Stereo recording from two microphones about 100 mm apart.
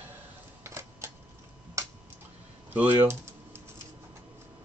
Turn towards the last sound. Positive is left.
turn(degrees=-20)  # may be behind; listen again after turning